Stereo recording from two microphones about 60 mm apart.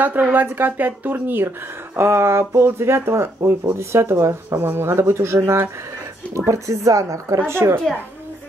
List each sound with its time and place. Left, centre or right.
0.0 s speech: right
2.0 s speech: right
4.6 s speech: right
7.3 s speech: right